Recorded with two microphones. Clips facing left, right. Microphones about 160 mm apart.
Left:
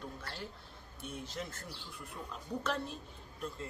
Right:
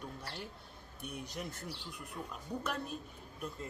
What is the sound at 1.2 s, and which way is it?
Speech, 20° right (ahead or behind).